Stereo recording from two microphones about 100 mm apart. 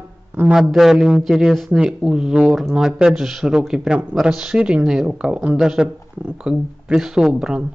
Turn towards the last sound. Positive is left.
turn(degrees=-5)  # may be behind; listen again after turning